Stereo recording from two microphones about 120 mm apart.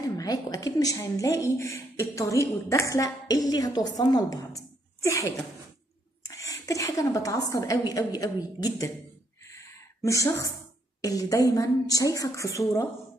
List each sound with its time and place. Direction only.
0.2 s speech: 30° left (ahead or behind)
4.6 s a sound: 25° left (ahead or behind)
6.2 s a woman's voice: 25° left (ahead or behind)
10.0 s speech: 25° left (ahead or behind)